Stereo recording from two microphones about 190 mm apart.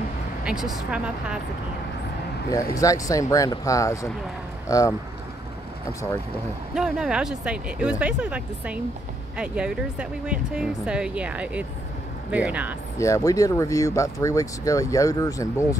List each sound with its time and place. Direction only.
0.5 s speech: centre (ahead or behind)
2.7 s speech: 20° left (ahead or behind)
6.7 s speech: 5° right (ahead or behind)
13.0 s speech: 15° left (ahead or behind)